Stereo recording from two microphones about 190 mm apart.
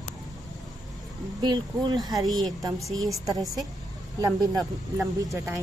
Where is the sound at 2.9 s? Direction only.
20° right (ahead or behind).